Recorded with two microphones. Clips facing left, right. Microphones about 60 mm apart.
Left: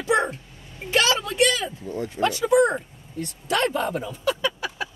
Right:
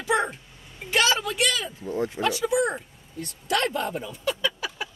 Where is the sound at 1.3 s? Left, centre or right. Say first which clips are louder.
Left 4 dB; left.